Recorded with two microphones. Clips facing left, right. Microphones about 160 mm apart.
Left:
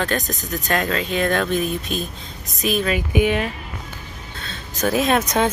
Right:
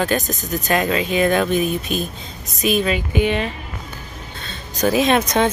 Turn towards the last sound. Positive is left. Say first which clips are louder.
# right 2 dB
turn(degrees=5)  # may be behind; listen again after turning